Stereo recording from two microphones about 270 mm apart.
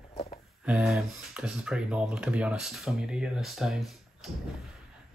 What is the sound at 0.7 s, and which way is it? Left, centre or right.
Speech, centre.